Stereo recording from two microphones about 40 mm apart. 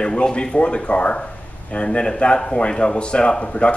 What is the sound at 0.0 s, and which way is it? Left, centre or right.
Speech, left.